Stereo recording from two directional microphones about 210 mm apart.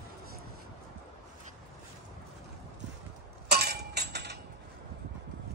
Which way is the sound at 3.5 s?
50° right (ahead or behind).